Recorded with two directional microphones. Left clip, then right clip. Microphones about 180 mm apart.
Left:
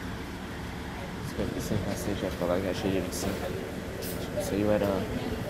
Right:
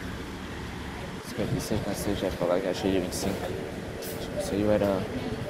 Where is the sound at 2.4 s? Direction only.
20° right (ahead or behind).